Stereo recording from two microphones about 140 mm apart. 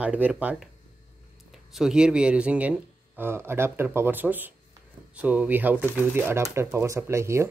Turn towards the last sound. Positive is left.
turn(degrees=-20)  # may be behind; listen again after turning